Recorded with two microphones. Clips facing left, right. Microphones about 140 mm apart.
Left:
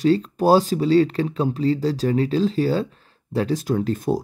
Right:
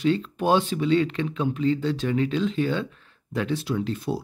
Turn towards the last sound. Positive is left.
turn(degrees=45)  # may be behind; listen again after turning